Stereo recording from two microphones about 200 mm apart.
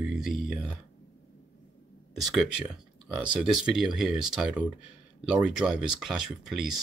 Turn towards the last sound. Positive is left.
turn(degrees=0)  # may be behind; listen again after turning